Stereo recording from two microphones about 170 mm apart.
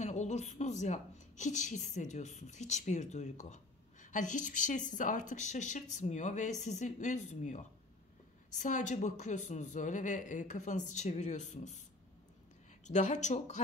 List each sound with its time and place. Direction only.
0.0 s a woman's voice: 45° left (ahead or behind)
12.8 s a woman's voice: 45° left (ahead or behind)